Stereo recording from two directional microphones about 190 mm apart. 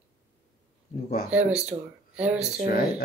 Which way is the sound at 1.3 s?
5° right (ahead or behind).